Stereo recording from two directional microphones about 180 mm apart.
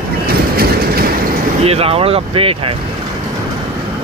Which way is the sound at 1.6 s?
35° right (ahead or behind).